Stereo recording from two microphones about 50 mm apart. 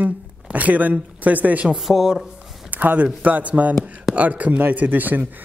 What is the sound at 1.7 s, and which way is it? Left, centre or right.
Speech, centre.